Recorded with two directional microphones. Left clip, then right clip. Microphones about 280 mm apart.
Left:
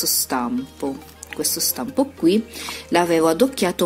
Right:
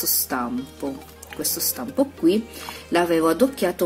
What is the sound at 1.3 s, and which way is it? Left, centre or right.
Speech, left.